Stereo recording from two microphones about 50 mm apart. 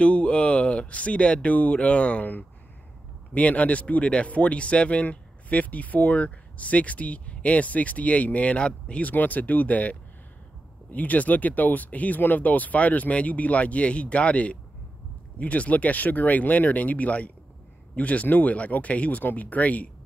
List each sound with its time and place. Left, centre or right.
0.0 s speech: left
9.1 s speech: left